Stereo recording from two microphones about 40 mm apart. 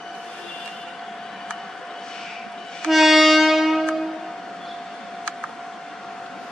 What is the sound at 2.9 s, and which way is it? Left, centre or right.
Music, centre.